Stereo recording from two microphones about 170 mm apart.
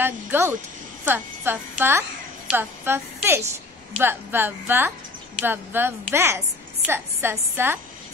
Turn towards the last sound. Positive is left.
turn(degrees=-15)  # may be behind; listen again after turning